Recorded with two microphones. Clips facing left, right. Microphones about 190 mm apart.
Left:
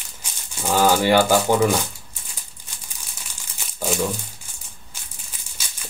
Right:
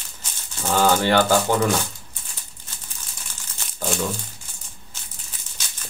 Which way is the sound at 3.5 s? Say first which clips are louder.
Left 2 dB; 5° left (ahead or behind).